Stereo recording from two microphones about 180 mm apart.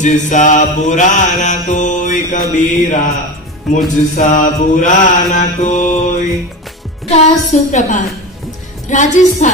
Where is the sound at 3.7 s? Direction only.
45° left (ahead or behind).